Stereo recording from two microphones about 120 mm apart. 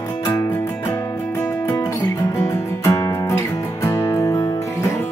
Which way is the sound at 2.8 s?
25° left (ahead or behind).